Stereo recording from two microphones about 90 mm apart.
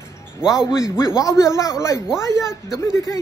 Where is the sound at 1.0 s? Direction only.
35° left (ahead or behind).